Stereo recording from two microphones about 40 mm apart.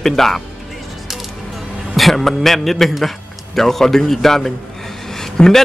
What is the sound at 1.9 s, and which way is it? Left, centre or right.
A man's voice, centre.